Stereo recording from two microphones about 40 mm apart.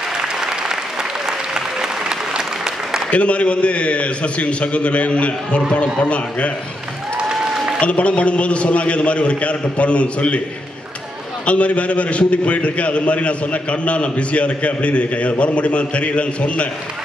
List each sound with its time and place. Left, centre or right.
0.2 s applause: centre
3.1 s a man's voice: left
7.5 s a sound: centre
7.8 s a man's voice: left
11.4 s a man's voice: left